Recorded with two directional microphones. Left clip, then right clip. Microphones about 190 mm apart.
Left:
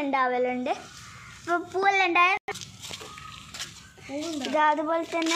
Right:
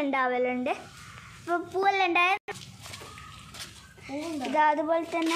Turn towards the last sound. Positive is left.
turn(degrees=-10)  # may be behind; listen again after turning